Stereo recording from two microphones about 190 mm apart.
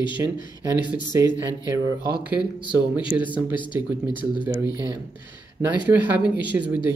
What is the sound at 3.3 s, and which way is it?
Speech, 25° left (ahead or behind).